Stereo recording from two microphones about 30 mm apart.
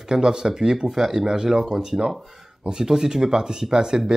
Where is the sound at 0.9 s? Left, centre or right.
Centre.